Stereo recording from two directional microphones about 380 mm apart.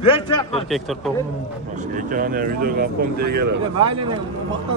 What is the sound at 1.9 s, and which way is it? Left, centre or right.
Speech, right.